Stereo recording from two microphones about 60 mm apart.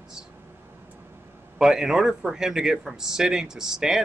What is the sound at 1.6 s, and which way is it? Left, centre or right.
Speech, centre.